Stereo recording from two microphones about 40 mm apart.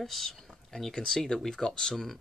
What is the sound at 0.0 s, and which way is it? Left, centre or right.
Speech, centre.